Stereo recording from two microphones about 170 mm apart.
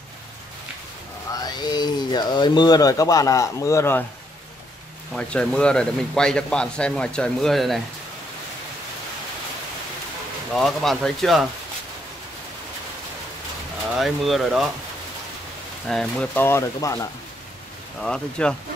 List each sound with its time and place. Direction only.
1.3 s speech: 25° left (ahead or behind)
5.1 s speech: 5° left (ahead or behind)
10.5 s speech: centre (ahead or behind)
13.9 s speech: centre (ahead or behind)
15.9 s speech: 5° left (ahead or behind)
18.0 s speech: 5° left (ahead or behind)